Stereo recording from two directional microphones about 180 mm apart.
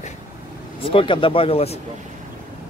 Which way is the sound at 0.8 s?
30° left (ahead or behind).